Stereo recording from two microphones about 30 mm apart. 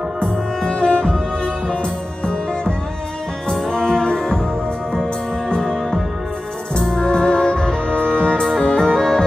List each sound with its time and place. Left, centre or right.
0.2 s music: left
1.0 s music: centre
4.0 s music: left
5.6 s music: centre; by 8.4 s left
8.5 s music: left